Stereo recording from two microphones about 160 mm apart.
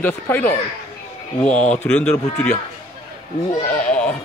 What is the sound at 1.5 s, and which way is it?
Speech, 50° left (ahead or behind).